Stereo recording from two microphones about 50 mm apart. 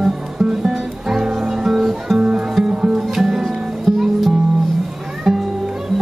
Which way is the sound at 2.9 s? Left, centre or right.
Centre.